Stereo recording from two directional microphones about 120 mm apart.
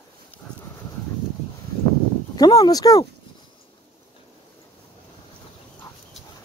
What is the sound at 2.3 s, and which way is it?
Speech, 30° left (ahead or behind).